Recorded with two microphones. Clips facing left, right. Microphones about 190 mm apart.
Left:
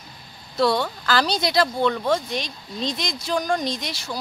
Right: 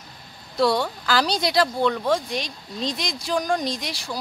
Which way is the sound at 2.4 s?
35° right (ahead or behind).